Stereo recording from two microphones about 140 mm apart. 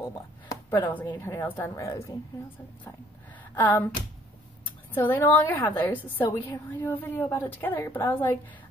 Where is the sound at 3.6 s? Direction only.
15° left (ahead or behind).